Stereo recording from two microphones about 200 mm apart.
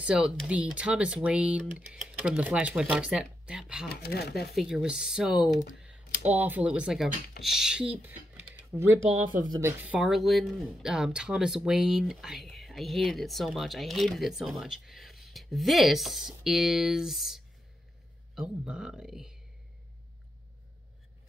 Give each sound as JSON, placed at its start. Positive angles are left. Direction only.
{"t": 0.0, "sound": "speech", "side_deg": 0}
{"t": 4.0, "sound": "speech", "side_deg": 50}
{"t": 4.6, "sound": "speech", "side_deg": 0}
{"t": 5.8, "sound": "typing", "side_deg": -5}
{"t": 6.3, "sound": "speech", "side_deg": -10}